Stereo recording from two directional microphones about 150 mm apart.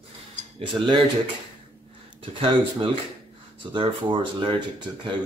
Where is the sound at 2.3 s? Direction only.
35° right (ahead or behind).